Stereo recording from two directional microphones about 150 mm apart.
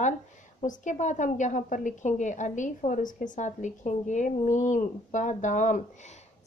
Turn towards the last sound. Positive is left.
turn(degrees=55)  # may be behind; listen again after turning